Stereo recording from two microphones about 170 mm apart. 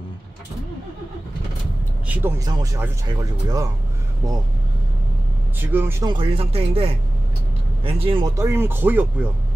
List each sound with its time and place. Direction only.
2.0 s speech: 15° right (ahead or behind)
5.6 s speech: 10° right (ahead or behind)
6.0 s speech: 30° right (ahead or behind)
8.4 s speech: 15° right (ahead or behind)